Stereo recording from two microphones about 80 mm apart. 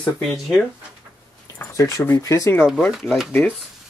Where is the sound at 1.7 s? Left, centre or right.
Left.